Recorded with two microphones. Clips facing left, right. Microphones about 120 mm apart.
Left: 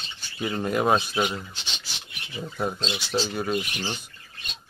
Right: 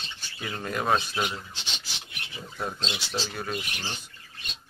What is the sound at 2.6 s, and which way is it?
Speech, 20° left (ahead or behind).